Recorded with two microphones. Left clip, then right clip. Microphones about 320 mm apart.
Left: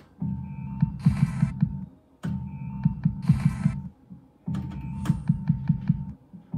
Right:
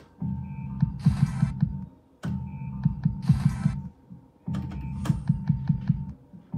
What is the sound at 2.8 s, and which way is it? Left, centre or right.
Hum, centre.